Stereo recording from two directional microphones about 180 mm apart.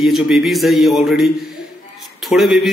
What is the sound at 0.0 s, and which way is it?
Speech, centre (ahead or behind).